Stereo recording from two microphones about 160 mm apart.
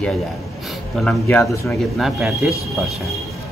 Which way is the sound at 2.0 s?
Centre (ahead or behind).